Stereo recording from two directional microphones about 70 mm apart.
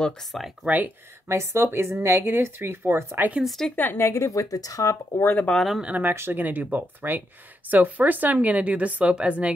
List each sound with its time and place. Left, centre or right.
0.3 s speech: centre
0.7 s speech: right
1.3 s speech: right
3.4 s speech: centre
3.7 s speech: left
4.2 s speech: left
5.2 s speech: left
5.5 s speech: centre
5.8 s speech: right